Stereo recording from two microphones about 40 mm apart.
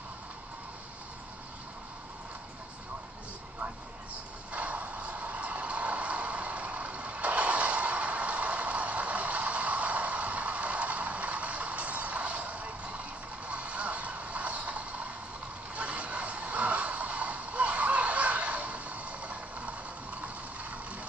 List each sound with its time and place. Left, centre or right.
4.5 s vehicle: right
13.5 s music: right
15.7 s vehicle: right